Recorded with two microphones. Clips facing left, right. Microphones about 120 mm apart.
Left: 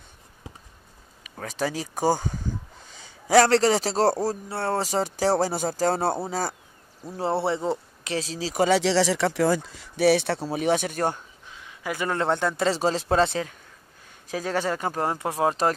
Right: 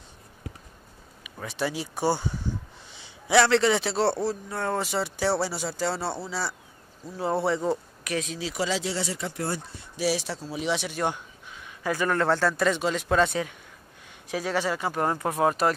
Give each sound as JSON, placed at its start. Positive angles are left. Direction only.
{"t": 1.2, "sound": "speech", "side_deg": 40}
{"t": 3.3, "sound": "a man's voice", "side_deg": 40}
{"t": 7.2, "sound": "speech", "side_deg": 30}
{"t": 8.5, "sound": "speech", "side_deg": 60}
{"t": 11.8, "sound": "speech", "side_deg": 20}
{"t": 14.3, "sound": "speech", "side_deg": 45}
{"t": 15.0, "sound": "speech", "side_deg": 25}